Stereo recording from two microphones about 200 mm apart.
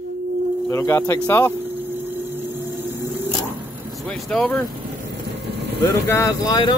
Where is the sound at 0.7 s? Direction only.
15° left (ahead or behind).